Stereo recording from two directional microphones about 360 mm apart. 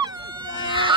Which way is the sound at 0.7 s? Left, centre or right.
Centre.